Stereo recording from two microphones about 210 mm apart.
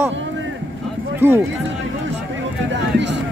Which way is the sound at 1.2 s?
10° right (ahead or behind).